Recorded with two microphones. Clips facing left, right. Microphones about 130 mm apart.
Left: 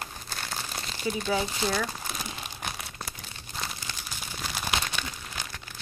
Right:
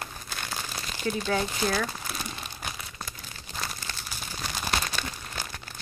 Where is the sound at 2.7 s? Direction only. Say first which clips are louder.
Left 1 dB; 65° left (ahead or behind).